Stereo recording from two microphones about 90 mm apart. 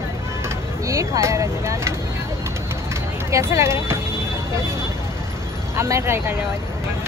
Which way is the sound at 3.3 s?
30° right (ahead or behind).